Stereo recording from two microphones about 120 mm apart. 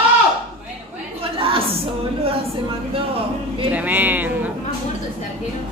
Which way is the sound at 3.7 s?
15° right (ahead or behind).